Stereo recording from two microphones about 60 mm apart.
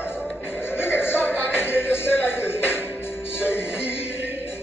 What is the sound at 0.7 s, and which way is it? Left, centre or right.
Music, left.